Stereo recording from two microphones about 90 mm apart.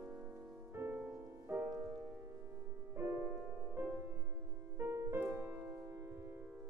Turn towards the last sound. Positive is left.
turn(degrees=-25)  # may be behind; listen again after turning